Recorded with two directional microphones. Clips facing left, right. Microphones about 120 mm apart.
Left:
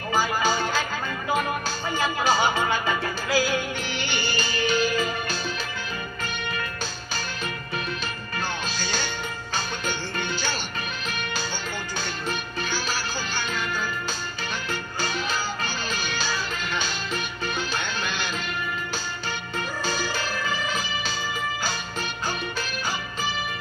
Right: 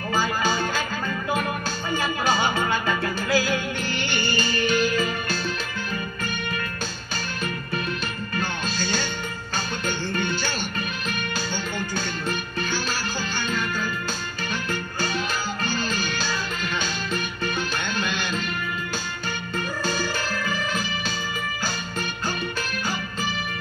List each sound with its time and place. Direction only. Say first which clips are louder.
0.1 s music: left 1 dB; 15° left (ahead or behind)
2.2 s music: left 1 dB; 10° left (ahead or behind)
3.3 s music: left 1 dB; 50° right (ahead or behind)
4.6 s music: even; 10° left (ahead or behind)
8.7 s music: right 3 dB; 50° right (ahead or behind)
14.7 s music: right 1 dB; 50° right (ahead or behind)
19.8 s music: right 1 dB; 50° right (ahead or behind)